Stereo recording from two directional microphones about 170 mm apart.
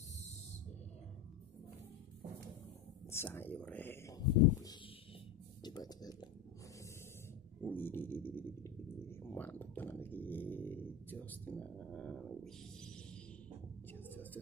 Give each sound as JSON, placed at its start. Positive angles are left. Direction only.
{"t": 3.1, "sound": "speech", "side_deg": 15}
{"t": 7.6, "sound": "a sound", "side_deg": 10}
{"t": 13.9, "sound": "whispering", "side_deg": 10}